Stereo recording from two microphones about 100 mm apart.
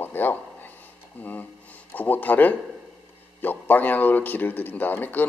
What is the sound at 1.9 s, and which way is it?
A man's voice, 15° left (ahead or behind).